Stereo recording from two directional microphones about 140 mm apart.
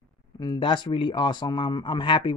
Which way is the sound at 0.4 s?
30° left (ahead or behind).